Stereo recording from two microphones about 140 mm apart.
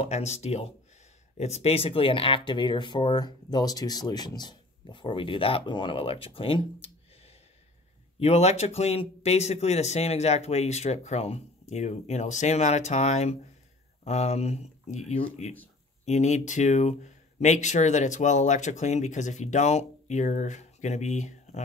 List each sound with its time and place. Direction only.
0.1 s speech: 50° left (ahead or behind)